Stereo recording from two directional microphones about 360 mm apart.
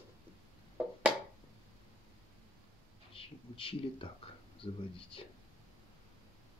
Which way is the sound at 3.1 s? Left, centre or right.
Centre.